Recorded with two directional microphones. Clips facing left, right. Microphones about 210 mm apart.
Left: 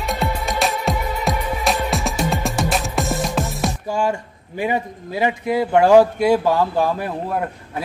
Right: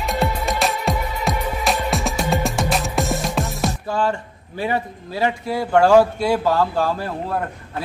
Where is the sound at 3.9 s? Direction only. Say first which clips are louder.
Left 2 dB; 10° left (ahead or behind).